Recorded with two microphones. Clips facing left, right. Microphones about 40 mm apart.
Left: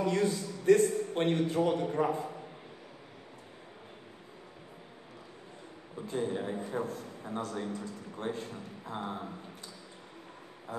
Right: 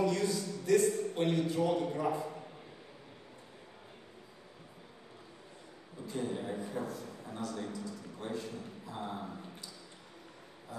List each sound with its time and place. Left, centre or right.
0.0 s a man's voice: left
5.9 s a man's voice: left
10.7 s a sound: left